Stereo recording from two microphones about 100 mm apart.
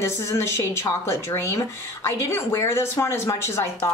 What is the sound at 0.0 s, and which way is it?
Speech, 30° left (ahead or behind).